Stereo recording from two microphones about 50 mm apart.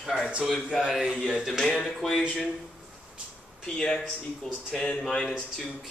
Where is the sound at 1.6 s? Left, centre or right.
Centre.